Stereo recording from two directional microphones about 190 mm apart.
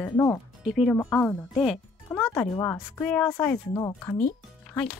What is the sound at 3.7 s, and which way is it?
Speech, 20° left (ahead or behind).